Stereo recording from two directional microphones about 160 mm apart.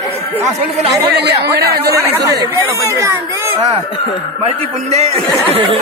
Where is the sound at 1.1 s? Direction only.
90° right.